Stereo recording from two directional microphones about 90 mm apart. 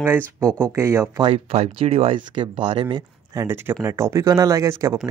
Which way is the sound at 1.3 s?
90° right.